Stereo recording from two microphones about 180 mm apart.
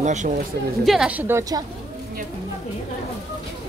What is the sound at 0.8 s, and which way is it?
Speech, 5° right (ahead or behind).